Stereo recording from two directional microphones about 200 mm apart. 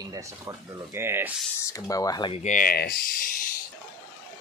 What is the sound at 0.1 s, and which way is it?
Speech, 15° right (ahead or behind).